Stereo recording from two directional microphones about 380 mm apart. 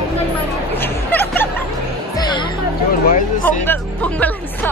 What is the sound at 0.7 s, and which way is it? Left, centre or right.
Music, centre.